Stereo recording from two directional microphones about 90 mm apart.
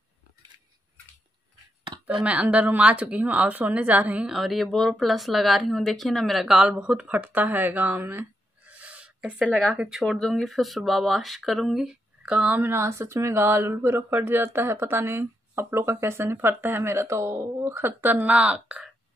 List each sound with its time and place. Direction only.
2.2 s speech: 15° right (ahead or behind)
4.3 s speech: centre (ahead or behind); by 18.1 s 30° right (ahead or behind)
18.1 s speech: 15° right (ahead or behind)